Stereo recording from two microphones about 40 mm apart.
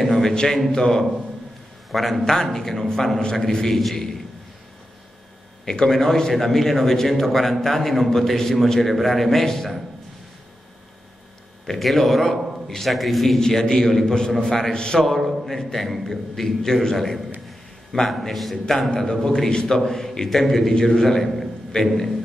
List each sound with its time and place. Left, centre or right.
0.0 s a sound: centre
0.3 s a man's voice: centre
1.9 s a man's voice: centre
2.2 s a man's voice: centre
5.9 s a man's voice: centre
11.6 s a man's voice: centre
13.4 s a man's voice: centre
15.0 s a sound: centre
15.5 s a man's voice: centre
17.9 s a man's voice: centre
18.3 s a man's voice: centre
21.4 s a sound: centre